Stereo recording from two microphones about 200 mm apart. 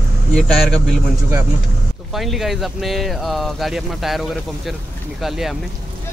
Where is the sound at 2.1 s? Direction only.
Centre (ahead or behind).